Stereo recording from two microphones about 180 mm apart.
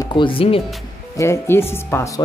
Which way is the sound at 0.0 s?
25° left (ahead or behind).